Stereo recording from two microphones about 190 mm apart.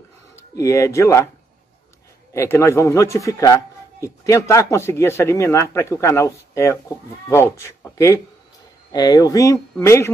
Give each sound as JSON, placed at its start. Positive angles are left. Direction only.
{"t": 0.6, "sound": "speech", "side_deg": 15}
{"t": 2.3, "sound": "speech", "side_deg": 15}